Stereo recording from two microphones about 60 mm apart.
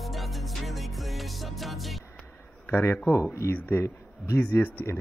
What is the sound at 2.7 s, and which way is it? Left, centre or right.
Speech, left.